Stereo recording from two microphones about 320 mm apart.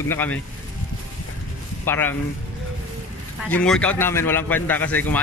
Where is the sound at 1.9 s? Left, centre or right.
Centre.